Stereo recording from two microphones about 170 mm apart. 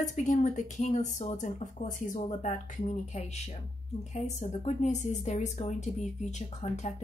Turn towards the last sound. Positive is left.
turn(degrees=45)  # may be behind; listen again after turning